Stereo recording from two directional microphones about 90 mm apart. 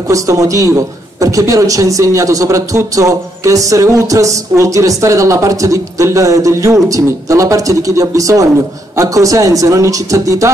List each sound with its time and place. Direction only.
0.1 s a man's voice: 40° right (ahead or behind)